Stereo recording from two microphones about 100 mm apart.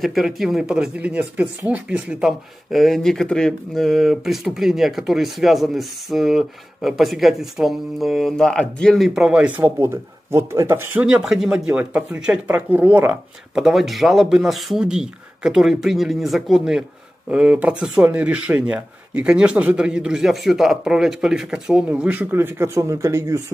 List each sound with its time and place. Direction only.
0.0 s speech: centre (ahead or behind)
9.6 s speech: 25° right (ahead or behind)
11.0 s speech: 10° right (ahead or behind)
13.6 s speech: centre (ahead or behind); by 23.4 s 30° right (ahead or behind)